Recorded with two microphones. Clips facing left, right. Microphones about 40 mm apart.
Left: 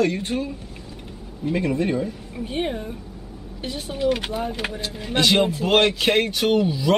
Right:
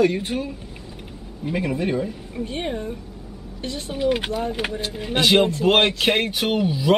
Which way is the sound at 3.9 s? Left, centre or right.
Centre.